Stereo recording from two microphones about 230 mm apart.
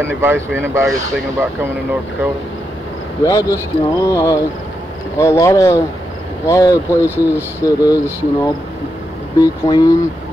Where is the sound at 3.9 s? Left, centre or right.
Centre.